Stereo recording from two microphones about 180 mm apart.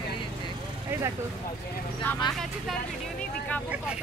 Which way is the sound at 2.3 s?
5° left (ahead or behind).